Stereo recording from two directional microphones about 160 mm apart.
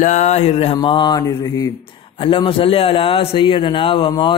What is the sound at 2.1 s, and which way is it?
A man's voice, 35° left (ahead or behind).